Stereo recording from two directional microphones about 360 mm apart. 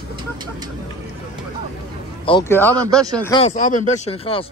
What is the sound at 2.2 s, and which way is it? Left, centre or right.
Speech, centre.